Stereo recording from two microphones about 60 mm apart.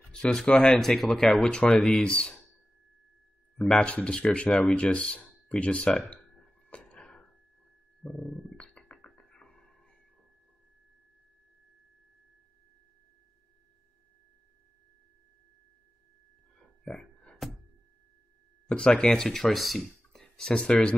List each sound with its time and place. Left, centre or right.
0.1 s speech: centre
0.7 s speech: centre
3.5 s speech: centre
6.3 s a sound: centre
16.5 s a sound: centre
18.7 s speech: centre
20.5 s speech: centre